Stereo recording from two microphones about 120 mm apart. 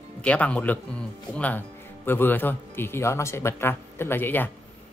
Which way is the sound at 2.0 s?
15° left (ahead or behind).